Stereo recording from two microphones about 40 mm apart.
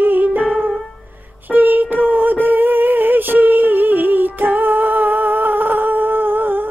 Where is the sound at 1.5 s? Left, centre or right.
Right.